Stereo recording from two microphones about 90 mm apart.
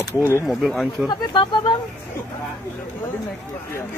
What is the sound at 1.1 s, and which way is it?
Speech, 55° left (ahead or behind).